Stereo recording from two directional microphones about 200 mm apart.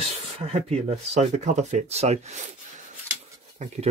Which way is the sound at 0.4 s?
30° right (ahead or behind).